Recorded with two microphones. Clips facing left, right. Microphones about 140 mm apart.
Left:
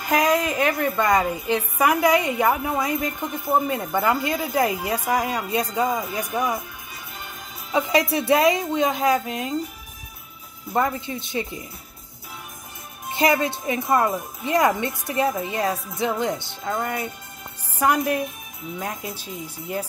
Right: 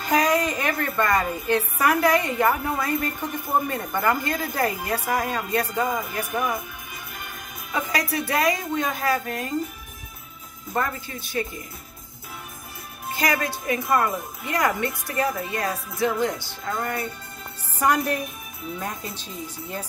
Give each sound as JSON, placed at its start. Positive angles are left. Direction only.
{"t": 0.0, "sound": "a woman's voice", "side_deg": 10}
{"t": 8.1, "sound": "speech", "side_deg": 25}
{"t": 10.7, "sound": "speech", "side_deg": 20}
{"t": 13.1, "sound": "a woman's voice", "side_deg": 25}